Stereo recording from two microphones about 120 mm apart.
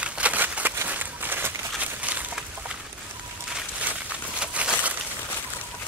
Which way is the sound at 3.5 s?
10° right (ahead or behind).